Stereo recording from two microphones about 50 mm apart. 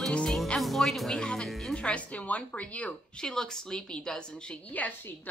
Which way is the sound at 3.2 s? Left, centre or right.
Centre.